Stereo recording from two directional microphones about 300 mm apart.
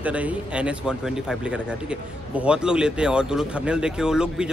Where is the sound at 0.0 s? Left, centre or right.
Centre.